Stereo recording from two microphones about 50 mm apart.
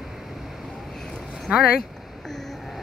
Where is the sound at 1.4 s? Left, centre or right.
Centre.